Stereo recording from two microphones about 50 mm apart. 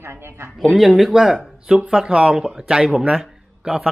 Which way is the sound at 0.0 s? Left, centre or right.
Right.